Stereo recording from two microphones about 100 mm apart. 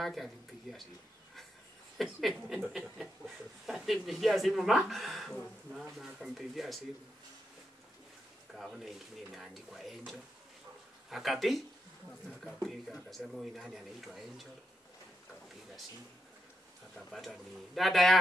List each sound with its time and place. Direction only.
0.0 s speech: centre (ahead or behind)
2.0 s speech: centre (ahead or behind)
8.5 s speech: 5° right (ahead or behind)
11.1 s speech: centre (ahead or behind)
12.6 s speech: centre (ahead or behind)
16.9 s speech: centre (ahead or behind)